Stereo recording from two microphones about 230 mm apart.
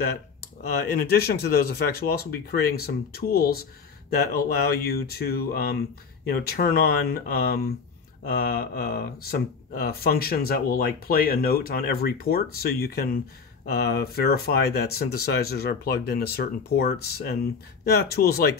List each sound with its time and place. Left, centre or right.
0.9 s speech: left